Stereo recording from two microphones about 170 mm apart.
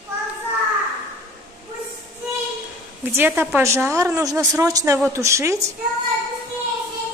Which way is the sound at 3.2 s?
10° right (ahead or behind).